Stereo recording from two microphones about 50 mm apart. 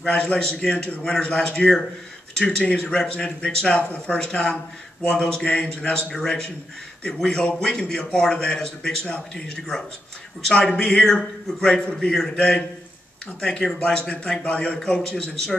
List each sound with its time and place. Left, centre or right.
0.0 s a man's voice: left
10.5 s a man's voice: centre